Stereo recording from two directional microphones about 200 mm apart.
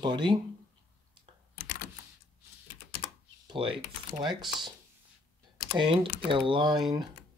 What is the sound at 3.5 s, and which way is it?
Speech, 25° right (ahead or behind).